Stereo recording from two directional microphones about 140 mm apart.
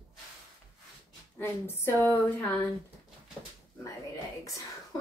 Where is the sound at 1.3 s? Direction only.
15° left (ahead or behind).